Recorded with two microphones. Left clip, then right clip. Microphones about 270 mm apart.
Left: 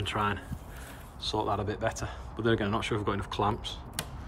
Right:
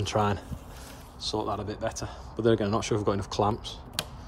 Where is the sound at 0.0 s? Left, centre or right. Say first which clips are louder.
Right 3 dB; right.